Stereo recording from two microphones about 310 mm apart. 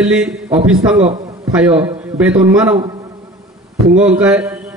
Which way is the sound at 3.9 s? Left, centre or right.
Centre.